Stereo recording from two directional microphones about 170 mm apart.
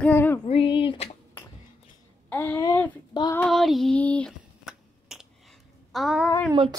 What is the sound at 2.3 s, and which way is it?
Speech, 10° left (ahead or behind).